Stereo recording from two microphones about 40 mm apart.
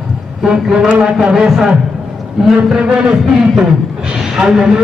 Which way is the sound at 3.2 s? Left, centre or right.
Centre.